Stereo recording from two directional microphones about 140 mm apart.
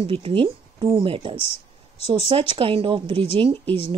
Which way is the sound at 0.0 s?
40° right (ahead or behind).